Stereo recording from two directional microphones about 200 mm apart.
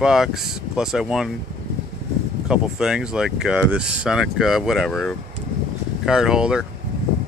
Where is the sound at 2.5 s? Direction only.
5° right (ahead or behind).